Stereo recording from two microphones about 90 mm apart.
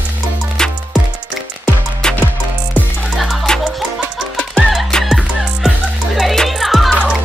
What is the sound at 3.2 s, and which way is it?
Music, centre (ahead or behind).